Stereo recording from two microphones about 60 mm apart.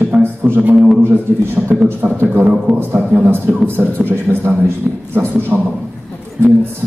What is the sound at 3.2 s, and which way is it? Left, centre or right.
A man's voice, right.